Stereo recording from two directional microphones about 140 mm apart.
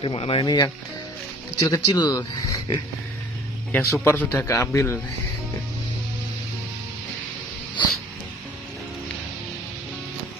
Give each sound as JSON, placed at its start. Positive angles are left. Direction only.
{"t": 0.0, "sound": "a man's voice", "side_deg": 40}